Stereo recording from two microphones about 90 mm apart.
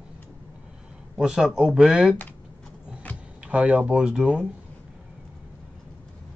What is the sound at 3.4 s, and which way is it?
Speech, 15° right (ahead or behind).